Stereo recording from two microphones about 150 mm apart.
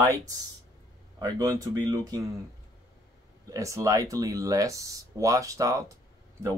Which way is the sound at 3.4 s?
20° right (ahead or behind).